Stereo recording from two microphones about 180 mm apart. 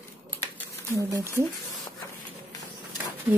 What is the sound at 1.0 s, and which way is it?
Speech, 15° right (ahead or behind).